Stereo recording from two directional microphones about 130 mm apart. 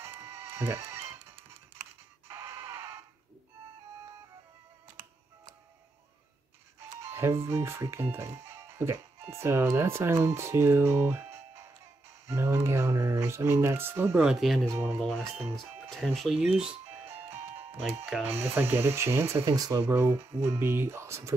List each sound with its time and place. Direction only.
0.0 s music: 20° right (ahead or behind)
2.2 s a sound: 20° right (ahead or behind)
7.0 s speech: 20° right (ahead or behind)
14.2 s speech: centre (ahead or behind)
14.7 s speech: 20° right (ahead or behind)
16.0 s speech: centre (ahead or behind)
17.3 s music: 15° right (ahead or behind)
18.1 s speech: 15° right (ahead or behind)